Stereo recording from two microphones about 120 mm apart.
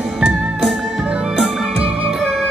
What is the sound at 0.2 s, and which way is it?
Music, 10° right (ahead or behind).